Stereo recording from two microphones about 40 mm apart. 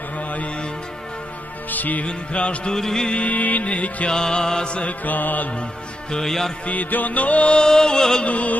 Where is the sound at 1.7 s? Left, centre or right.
Left.